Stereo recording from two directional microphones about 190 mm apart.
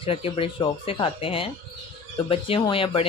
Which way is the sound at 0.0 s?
30° left (ahead or behind).